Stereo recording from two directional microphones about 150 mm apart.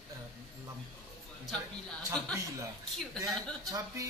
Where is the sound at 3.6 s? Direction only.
20° right (ahead or behind).